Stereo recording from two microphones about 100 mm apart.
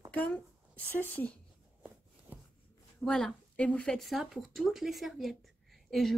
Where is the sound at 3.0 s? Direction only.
5° left (ahead or behind).